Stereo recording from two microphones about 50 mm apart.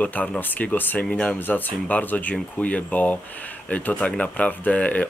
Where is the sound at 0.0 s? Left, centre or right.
Left.